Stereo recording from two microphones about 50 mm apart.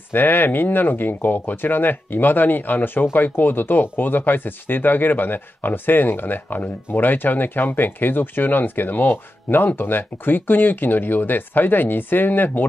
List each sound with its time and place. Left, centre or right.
0.1 s speech: left